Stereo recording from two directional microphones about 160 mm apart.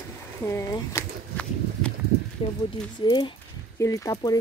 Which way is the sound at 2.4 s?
40° left (ahead or behind).